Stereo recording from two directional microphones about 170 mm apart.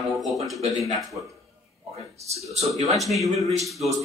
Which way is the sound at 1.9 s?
40° right (ahead or behind).